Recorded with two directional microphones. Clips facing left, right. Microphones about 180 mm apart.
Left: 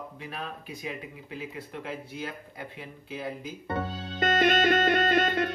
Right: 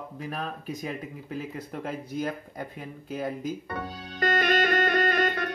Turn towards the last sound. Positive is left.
turn(degrees=25)  # may be behind; listen again after turning